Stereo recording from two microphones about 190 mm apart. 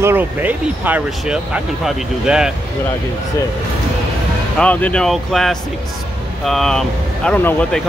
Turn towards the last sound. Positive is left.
turn(degrees=5)  # may be behind; listen again after turning